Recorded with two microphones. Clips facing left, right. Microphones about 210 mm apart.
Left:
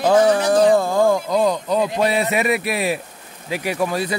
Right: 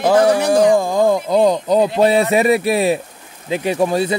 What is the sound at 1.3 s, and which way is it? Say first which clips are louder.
Speech: right 4 dB; 35° right (ahead or behind).